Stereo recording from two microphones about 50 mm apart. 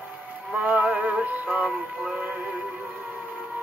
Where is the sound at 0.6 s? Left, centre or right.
Right.